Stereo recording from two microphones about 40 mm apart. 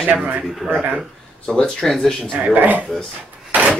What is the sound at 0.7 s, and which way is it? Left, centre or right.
Speech, right.